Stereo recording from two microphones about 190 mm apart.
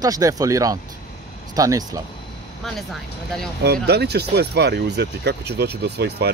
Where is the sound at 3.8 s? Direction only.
60° right (ahead or behind).